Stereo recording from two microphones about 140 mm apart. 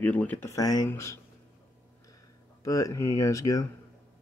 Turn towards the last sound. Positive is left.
turn(degrees=25)  # may be behind; listen again after turning